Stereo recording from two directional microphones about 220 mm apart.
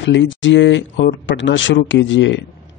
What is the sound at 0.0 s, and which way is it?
Speech, 55° left (ahead or behind).